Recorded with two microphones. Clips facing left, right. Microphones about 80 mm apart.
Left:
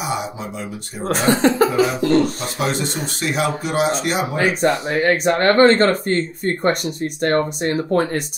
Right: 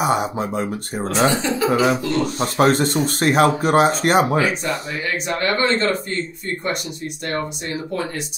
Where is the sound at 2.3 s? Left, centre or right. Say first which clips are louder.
Right 6 dB; right.